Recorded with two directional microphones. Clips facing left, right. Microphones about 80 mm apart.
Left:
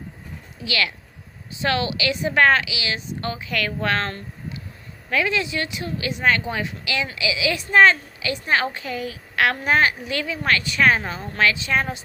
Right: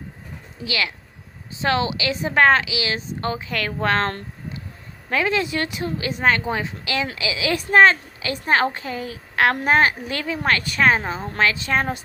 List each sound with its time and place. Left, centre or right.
0.7 s a woman's voice: right
5.1 s a woman's voice: right
10.8 s a woman's voice: right
11.5 s a woman's voice: right